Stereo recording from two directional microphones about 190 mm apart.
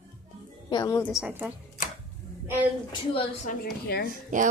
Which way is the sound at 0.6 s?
20° left (ahead or behind).